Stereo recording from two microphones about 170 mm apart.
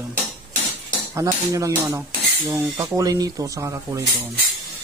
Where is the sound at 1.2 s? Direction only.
20° right (ahead or behind).